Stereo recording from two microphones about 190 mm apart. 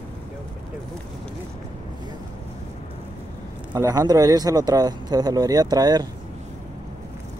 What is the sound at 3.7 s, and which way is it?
Speech, 20° right (ahead or behind).